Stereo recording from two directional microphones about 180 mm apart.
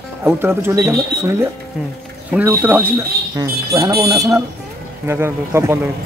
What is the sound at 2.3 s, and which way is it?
Speech, 10° right (ahead or behind).